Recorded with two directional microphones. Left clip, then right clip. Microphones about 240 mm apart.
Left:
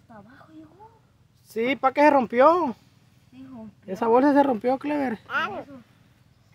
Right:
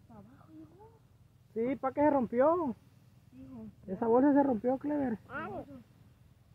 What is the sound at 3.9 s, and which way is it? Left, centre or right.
Speech, left.